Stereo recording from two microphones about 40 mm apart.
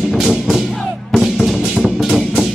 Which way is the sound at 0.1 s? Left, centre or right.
Centre.